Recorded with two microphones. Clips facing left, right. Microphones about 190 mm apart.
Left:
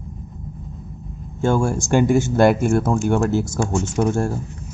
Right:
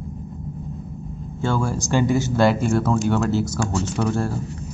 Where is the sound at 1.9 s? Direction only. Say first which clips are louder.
Left 3 dB; 50° left (ahead or behind).